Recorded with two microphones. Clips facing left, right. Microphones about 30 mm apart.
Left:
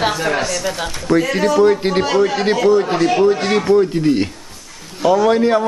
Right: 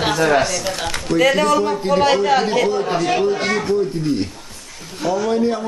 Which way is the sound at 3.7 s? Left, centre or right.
Left.